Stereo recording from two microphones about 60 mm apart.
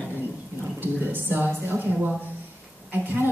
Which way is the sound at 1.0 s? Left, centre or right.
Right.